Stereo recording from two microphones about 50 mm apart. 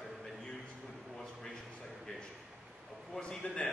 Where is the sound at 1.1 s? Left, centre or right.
Centre.